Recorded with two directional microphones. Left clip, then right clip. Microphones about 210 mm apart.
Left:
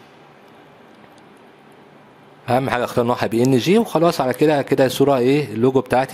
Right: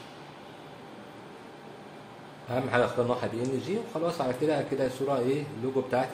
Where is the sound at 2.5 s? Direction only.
50° left (ahead or behind).